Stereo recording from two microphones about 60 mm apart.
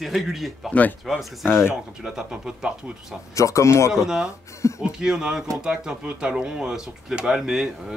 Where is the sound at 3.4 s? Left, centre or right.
Left.